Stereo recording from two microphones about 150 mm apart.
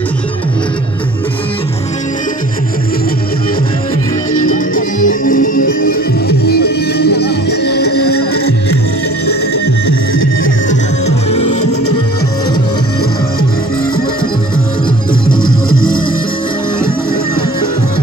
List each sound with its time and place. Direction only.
4.4 s music: 65° left (ahead or behind); by 8.5 s 90° left
10.7 s music: 45° left (ahead or behind)